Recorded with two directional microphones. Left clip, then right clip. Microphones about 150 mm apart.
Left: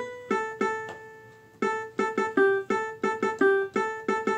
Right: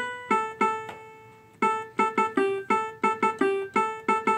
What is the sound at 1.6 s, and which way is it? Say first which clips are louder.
Music: right 3 dB; 5° right (ahead or behind).